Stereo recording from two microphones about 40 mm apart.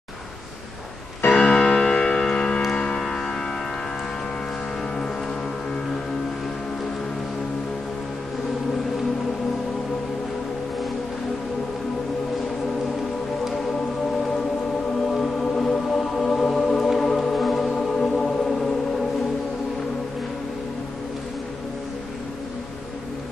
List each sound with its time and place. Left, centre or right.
1.3 s music: left
15.0 s music: centre
17.6 s music: centre